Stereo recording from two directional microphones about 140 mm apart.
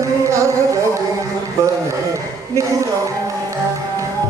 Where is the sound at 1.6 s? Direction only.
20° right (ahead or behind).